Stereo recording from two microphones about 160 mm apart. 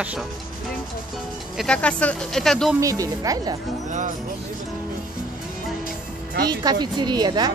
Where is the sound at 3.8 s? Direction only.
50° right (ahead or behind).